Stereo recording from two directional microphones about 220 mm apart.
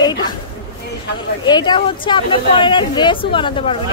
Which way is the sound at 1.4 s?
20° left (ahead or behind).